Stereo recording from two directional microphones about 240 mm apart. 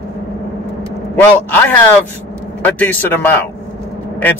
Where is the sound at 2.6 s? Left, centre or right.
Centre.